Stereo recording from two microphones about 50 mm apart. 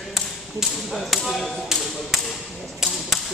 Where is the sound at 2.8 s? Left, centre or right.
Centre.